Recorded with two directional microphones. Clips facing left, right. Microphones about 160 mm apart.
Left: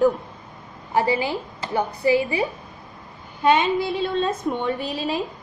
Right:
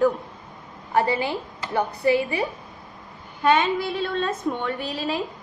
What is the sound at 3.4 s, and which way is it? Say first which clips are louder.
A woman's voice: left 1 dB; 20° left (ahead or behind).